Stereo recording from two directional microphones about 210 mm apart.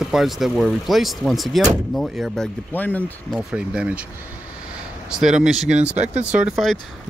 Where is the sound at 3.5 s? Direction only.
5° right (ahead or behind).